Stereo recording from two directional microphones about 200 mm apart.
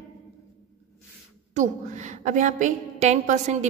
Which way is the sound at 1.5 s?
40° right (ahead or behind).